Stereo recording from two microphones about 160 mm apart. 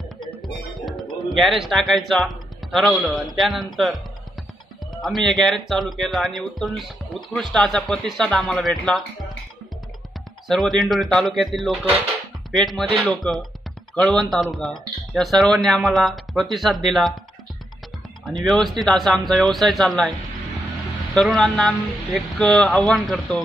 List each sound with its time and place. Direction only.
0.8 s speech: centre (ahead or behind)
5.0 s speech: centre (ahead or behind)
10.5 s speech: centre (ahead or behind)
18.4 s speech: centre (ahead or behind)